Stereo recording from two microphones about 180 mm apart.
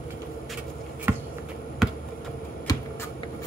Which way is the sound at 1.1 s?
10° right (ahead or behind).